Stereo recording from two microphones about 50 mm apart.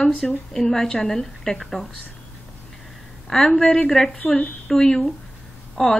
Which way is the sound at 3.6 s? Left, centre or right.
Centre.